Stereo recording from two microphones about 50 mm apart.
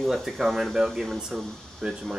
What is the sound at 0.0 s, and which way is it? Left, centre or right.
Speech, centre.